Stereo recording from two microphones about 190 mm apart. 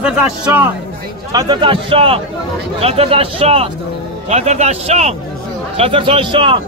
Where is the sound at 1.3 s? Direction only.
25° right (ahead or behind).